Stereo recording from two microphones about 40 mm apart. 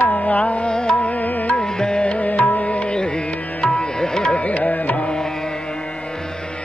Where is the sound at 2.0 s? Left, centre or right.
Left.